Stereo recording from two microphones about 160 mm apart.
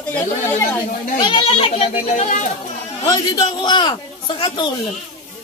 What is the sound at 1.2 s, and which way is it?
A child's voice, 30° left (ahead or behind).